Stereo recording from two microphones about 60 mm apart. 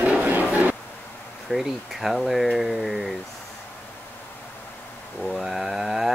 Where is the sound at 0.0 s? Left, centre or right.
Right.